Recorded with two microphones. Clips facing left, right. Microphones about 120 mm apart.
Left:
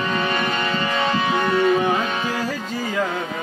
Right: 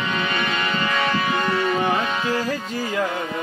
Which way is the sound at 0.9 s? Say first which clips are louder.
Left 2 dB; 30° left (ahead or behind).